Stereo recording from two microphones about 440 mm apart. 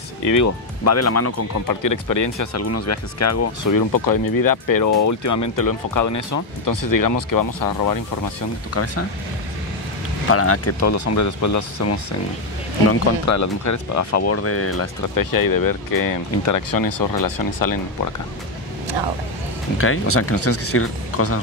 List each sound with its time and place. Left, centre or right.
0.2 s speech: left
10.3 s speech: left
15.1 s speech: left
19.8 s speech: left